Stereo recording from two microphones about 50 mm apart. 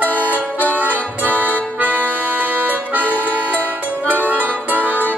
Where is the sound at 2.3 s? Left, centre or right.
Right.